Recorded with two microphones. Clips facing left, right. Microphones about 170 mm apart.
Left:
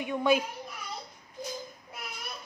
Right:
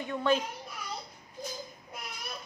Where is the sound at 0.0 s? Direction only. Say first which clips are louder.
Left 2 dB; 10° left (ahead or behind).